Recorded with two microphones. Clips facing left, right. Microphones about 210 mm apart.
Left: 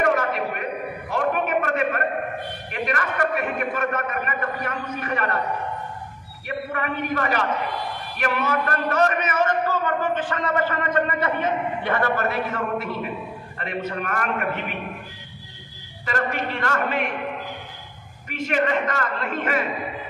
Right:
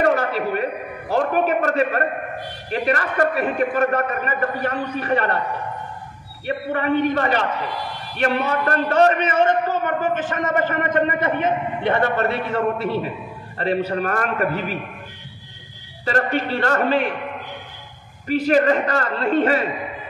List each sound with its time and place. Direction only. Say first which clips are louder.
0.0 s a sound: right 3 dB; 30° right (ahead or behind)
2.7 s a man's voice: right 6 dB; 35° right (ahead or behind)
6.4 s a man's voice: right 5 dB; 30° right (ahead or behind)
16.1 s a man's voice: right 5 dB; 35° right (ahead or behind)
18.3 s a man's voice: right 6 dB; 35° right (ahead or behind)